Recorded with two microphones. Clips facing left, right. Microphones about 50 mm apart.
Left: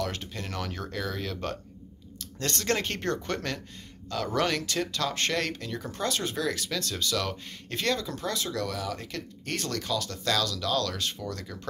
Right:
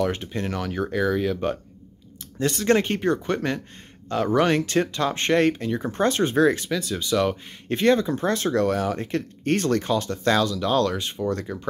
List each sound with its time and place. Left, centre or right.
0.0 s speech: right
0.5 s speech: centre; by 6.7 s right
6.7 s speech: centre